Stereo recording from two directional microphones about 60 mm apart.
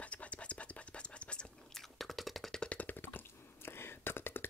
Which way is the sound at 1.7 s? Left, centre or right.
Centre.